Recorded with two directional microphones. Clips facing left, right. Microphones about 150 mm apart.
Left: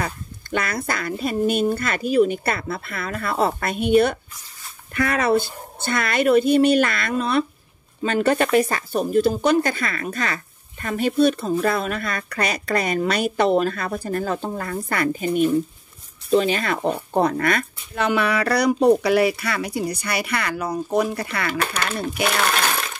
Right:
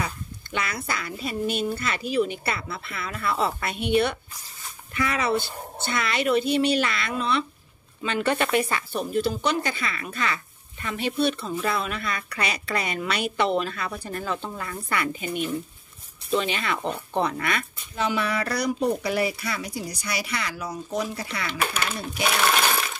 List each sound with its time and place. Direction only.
0.0 s speech: 45° left (ahead or behind)
17.9 s speech: 65° left (ahead or behind)